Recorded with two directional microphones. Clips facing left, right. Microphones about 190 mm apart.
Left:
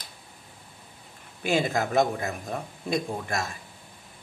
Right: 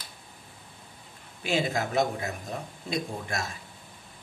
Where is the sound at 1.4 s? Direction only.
50° left (ahead or behind).